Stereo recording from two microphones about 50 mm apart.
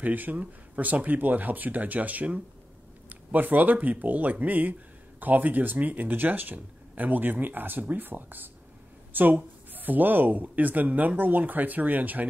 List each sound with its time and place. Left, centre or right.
0.0 s speech: right